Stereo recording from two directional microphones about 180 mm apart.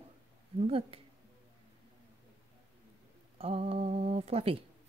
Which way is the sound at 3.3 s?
35° right (ahead or behind).